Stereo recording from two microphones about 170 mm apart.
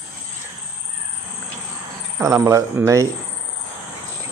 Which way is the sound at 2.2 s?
15° right (ahead or behind).